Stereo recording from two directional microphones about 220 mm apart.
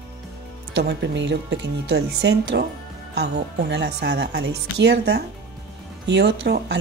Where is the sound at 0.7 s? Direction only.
55° right (ahead or behind).